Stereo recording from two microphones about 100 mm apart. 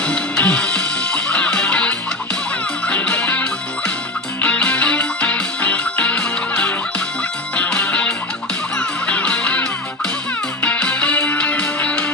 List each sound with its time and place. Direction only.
0.0 s music: 10° left (ahead or behind)